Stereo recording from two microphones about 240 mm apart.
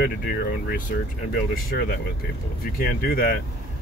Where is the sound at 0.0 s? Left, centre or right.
Left.